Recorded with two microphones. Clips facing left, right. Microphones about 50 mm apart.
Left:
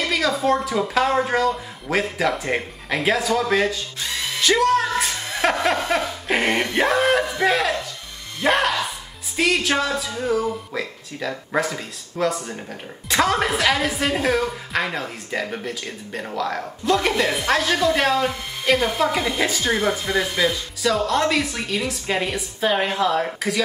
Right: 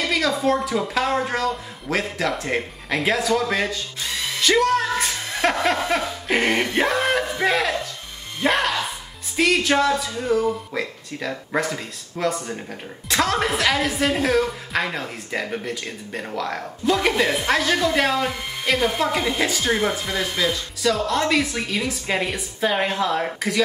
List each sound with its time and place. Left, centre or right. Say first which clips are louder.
0.0 s a woman's voice: even; centre
8.4 s music: left 1 dB; centre
9.4 s a woman's voice: right 2 dB; centre